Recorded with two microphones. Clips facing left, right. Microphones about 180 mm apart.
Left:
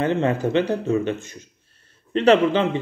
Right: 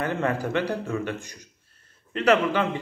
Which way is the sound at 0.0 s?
25° left (ahead or behind).